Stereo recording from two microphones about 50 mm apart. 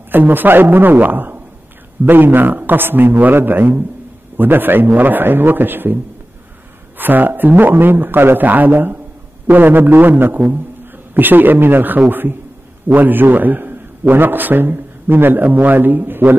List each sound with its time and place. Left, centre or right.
0.1 s a man's voice: right
7.0 s a man's voice: right